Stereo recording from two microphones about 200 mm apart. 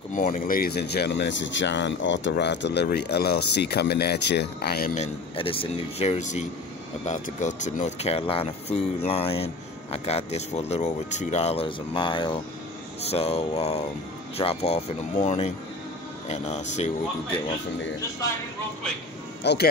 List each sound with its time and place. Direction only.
0.1 s speech: 40° left (ahead or behind)
4.9 s speech: 30° left (ahead or behind)
19.4 s speech: 55° left (ahead or behind)